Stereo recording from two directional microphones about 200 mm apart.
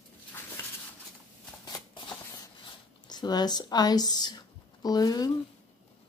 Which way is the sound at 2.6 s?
20° left (ahead or behind).